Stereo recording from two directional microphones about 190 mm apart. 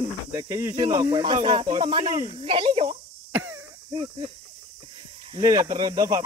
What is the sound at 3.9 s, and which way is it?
Speech, 25° right (ahead or behind).